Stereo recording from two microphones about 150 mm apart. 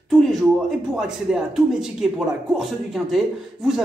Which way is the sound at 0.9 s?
5° right (ahead or behind).